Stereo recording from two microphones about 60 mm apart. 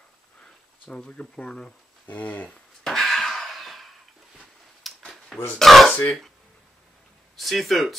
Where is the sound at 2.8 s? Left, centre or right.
Centre.